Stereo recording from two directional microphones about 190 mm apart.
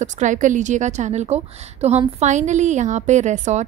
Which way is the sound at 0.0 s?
40° right (ahead or behind).